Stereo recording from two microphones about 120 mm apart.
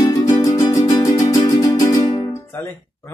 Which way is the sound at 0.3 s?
25° left (ahead or behind).